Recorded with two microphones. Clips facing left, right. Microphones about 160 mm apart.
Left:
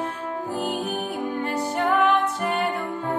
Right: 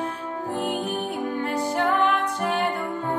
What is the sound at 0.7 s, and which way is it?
Music, 30° right (ahead or behind).